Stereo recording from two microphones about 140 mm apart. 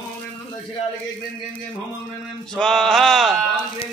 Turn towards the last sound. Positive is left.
turn(degrees=0)  # may be behind; listen again after turning